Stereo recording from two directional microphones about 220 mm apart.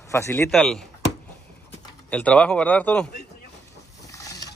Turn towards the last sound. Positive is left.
turn(degrees=15)  # may be behind; listen again after turning